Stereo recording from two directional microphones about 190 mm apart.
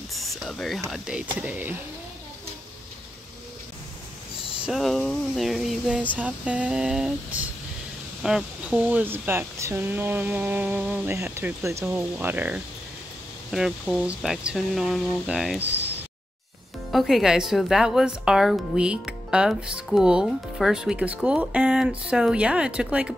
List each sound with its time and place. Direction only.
0.1 s a sound: centre (ahead or behind)
0.8 s speech: centre (ahead or behind)
4.6 s speech: centre (ahead or behind)
15.6 s speech: 65° right (ahead or behind)
16.9 s speech: centre (ahead or behind)